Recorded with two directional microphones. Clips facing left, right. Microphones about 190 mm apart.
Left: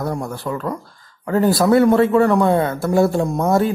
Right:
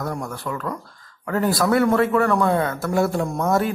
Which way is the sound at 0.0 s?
25° left (ahead or behind).